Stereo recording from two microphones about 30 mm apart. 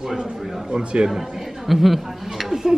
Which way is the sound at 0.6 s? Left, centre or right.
Right.